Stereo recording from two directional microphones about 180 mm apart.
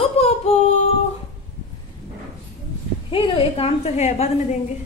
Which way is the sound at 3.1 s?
30° left (ahead or behind).